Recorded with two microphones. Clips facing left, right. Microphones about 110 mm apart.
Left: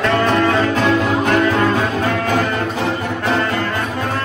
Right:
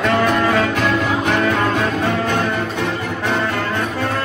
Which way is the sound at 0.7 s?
35° left (ahead or behind).